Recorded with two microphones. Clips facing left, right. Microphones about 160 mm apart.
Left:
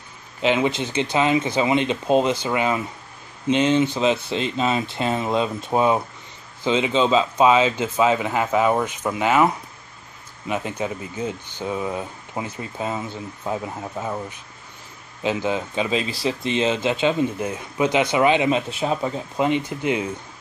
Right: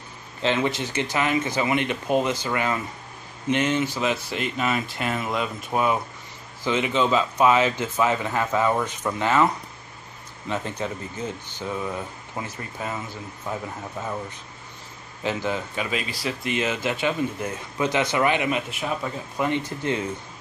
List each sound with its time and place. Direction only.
0.4 s speech: 15° left (ahead or behind)
10.5 s speech: 15° left (ahead or behind)
15.2 s speech: 20° left (ahead or behind)